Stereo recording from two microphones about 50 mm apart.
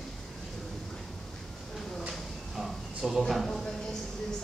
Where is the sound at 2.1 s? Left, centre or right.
Centre.